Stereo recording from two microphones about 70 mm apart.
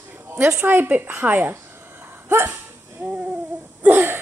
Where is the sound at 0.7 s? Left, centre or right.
Right.